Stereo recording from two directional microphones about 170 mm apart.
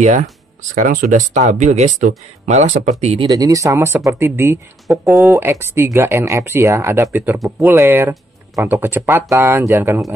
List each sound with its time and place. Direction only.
0.0 s speech: 45° right (ahead or behind)
3.3 s speech: 20° right (ahead or behind)